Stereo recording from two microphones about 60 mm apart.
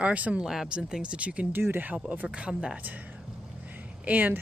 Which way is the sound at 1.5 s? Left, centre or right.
Right.